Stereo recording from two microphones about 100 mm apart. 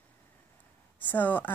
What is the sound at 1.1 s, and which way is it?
Speech, 20° left (ahead or behind).